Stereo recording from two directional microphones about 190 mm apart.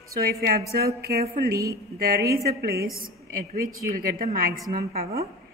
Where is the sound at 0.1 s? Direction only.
50° right (ahead or behind).